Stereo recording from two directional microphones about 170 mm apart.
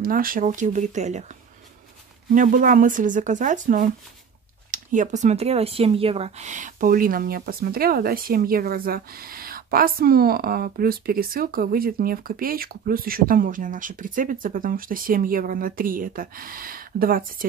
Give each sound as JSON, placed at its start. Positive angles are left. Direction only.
{"t": 0.0, "sound": "speech", "side_deg": -55}
{"t": 2.3, "sound": "speech", "side_deg": -50}